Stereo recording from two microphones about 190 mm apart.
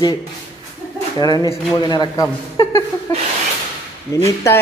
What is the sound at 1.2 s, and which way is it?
A man's voice, 20° left (ahead or behind).